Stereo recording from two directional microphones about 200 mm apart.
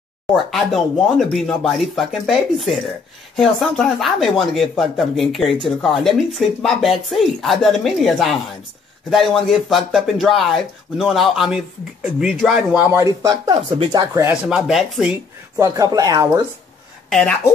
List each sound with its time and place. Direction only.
0.5 s speech: centre (ahead or behind); by 14.2 s 20° right (ahead or behind)
14.2 s speech: 5° right (ahead or behind)
15.6 s speech: 15° right (ahead or behind)
17.1 s speech: 5° left (ahead or behind)